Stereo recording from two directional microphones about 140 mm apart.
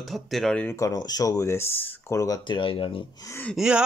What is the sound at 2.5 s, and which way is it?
Speech, 40° left (ahead or behind).